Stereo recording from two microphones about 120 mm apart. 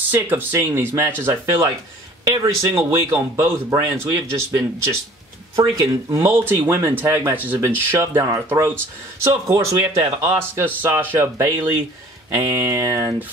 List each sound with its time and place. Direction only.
0.1 s speech: 15° right (ahead or behind)
5.6 s speech: 25° right (ahead or behind)